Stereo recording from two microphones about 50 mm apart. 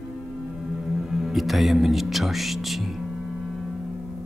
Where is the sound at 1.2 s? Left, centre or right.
Centre.